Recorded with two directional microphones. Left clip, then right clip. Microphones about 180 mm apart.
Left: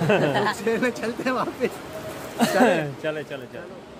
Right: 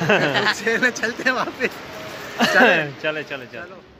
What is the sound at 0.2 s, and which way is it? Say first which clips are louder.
Speech: right 3 dB; 30° left (ahead or behind).